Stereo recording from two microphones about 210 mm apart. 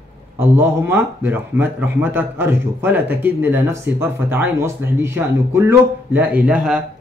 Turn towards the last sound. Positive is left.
turn(degrees=-5)  # may be behind; listen again after turning